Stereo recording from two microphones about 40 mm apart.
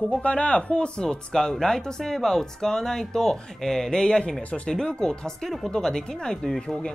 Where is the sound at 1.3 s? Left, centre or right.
Centre.